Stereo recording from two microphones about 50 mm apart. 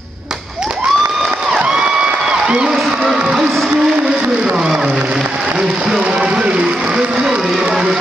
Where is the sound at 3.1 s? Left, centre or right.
Centre.